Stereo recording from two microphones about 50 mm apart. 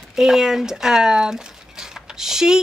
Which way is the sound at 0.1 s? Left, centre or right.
Centre.